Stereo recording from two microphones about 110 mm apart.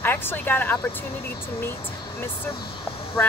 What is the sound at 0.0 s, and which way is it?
Speech, 20° left (ahead or behind).